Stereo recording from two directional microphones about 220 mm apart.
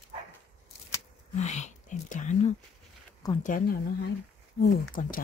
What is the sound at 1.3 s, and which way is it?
Whispering, 30° left (ahead or behind).